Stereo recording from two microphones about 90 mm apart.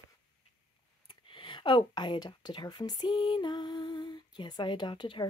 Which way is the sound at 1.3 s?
65° left (ahead or behind).